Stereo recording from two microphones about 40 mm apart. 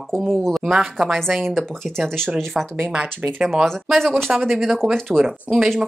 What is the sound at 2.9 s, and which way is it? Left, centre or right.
Speech, centre.